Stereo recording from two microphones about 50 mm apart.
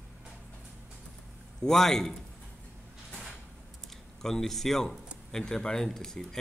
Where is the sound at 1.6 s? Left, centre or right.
Centre.